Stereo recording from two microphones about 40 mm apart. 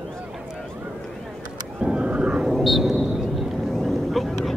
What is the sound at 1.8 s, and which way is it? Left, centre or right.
Vehicle, right.